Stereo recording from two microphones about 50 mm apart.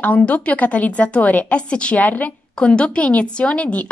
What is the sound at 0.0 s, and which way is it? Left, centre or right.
A woman's voice, left.